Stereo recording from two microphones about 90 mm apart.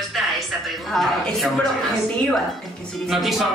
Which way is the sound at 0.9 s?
Centre (ahead or behind).